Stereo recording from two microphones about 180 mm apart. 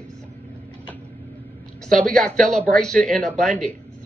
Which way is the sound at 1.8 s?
5° left (ahead or behind).